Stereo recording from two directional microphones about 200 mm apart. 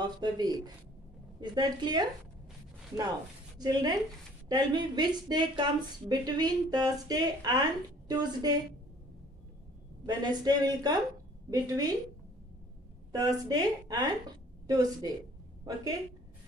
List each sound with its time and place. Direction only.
0.0 s speech: 20° right (ahead or behind)
3.5 s speech: 20° right (ahead or behind)
10.0 s speech: 20° right (ahead or behind)
13.1 s speech: 20° right (ahead or behind)